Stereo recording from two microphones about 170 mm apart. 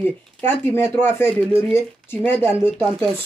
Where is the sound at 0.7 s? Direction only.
15° left (ahead or behind).